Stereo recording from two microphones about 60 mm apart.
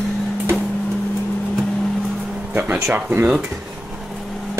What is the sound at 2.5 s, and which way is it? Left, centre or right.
Music, right.